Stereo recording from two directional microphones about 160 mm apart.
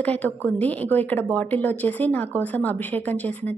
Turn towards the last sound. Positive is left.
turn(degrees=10)  # may be behind; listen again after turning